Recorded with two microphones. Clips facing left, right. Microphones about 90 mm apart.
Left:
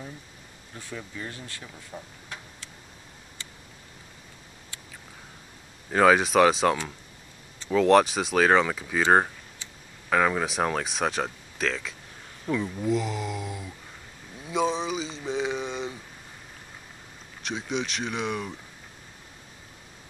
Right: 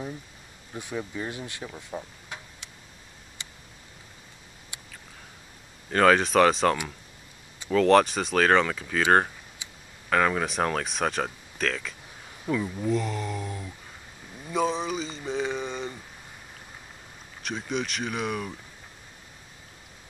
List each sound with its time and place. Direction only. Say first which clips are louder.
0.7 s speech: right 5 dB; 20° right (ahead or behind)
5.9 s speech: left 1 dB; 5° left (ahead or behind)
10.0 s speech: even; 5° left (ahead or behind)
14.4 s a sound: even; centre (ahead or behind)
17.4 s speech: even; centre (ahead or behind)